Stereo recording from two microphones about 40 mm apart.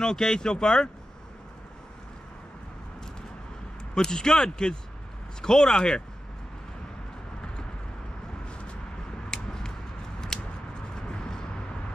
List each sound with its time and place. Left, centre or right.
0.0 s speech: centre
3.9 s speech: centre
8.5 s vehicle: left
9.3 s a sound: centre
11.0 s vehicle: centre